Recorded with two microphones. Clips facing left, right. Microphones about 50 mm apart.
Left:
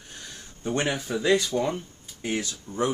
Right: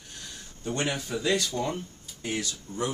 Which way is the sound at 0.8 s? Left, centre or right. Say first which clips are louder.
Left 3 dB; centre.